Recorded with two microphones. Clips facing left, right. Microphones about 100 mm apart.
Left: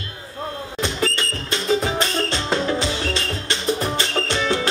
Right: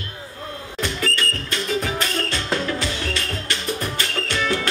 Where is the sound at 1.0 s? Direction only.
25° left (ahead or behind).